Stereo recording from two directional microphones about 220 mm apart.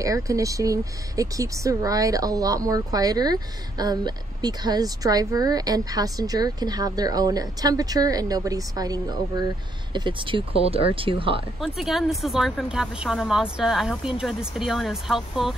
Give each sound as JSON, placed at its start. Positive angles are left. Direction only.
{"t": 0.0, "sound": "speech", "side_deg": -15}
{"t": 11.6, "sound": "speech", "side_deg": 0}